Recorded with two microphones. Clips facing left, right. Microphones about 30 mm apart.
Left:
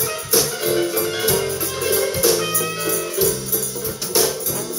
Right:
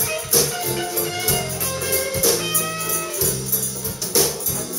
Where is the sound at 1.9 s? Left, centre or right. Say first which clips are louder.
Left 3 dB; left.